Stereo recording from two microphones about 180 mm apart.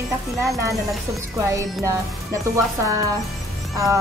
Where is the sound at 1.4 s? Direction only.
15° right (ahead or behind).